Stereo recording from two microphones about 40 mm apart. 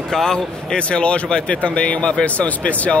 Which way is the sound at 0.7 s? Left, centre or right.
Left.